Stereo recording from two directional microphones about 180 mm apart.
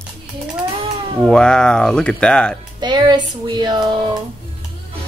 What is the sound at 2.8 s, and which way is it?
Speech, 25° right (ahead or behind).